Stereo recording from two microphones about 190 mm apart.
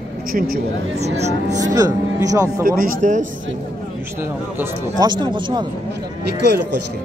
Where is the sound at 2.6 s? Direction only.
45° right (ahead or behind).